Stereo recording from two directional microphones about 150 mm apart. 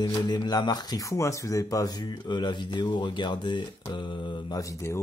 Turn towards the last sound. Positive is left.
turn(degrees=20)  # may be behind; listen again after turning